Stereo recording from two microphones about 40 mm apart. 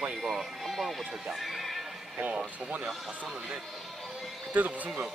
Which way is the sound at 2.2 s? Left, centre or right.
Right.